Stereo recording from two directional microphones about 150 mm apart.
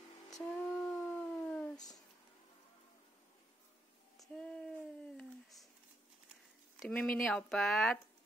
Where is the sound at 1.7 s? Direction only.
25° left (ahead or behind).